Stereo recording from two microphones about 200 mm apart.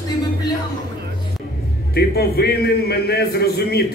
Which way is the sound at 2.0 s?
50° left (ahead or behind).